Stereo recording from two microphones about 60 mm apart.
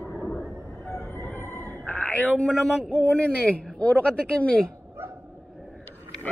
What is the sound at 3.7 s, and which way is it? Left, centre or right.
Speech, centre.